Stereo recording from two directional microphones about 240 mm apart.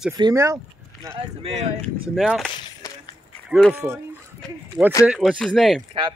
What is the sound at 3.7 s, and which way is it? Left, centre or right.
Speech, centre.